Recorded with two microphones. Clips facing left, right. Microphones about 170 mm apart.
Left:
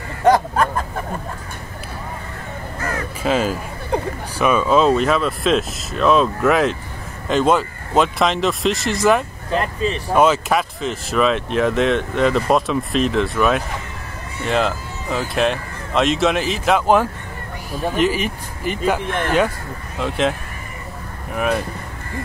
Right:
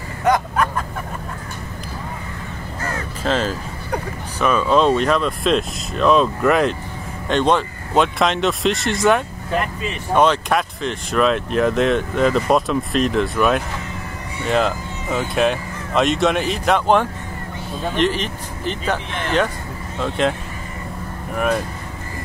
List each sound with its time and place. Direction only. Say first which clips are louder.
0.2 s a sound: left 3 dB; 30° left (ahead or behind)
3.3 s speech: left 2 dB; 10° left (ahead or behind)
19.0 s speech: left 4 dB; 50° left (ahead or behind)
20.0 s speech: even; centre (ahead or behind)